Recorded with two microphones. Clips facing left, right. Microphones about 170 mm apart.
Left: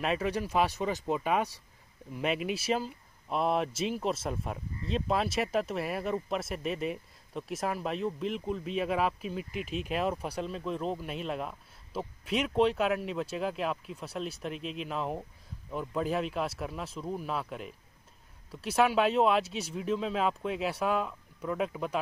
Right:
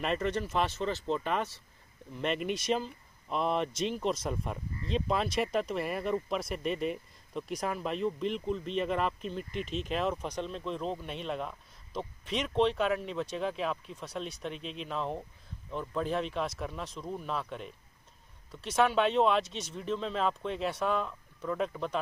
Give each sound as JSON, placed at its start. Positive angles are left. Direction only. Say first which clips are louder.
{"t": 0.0, "sound": "speech", "louder": "left 1 dB", "side_deg": 5}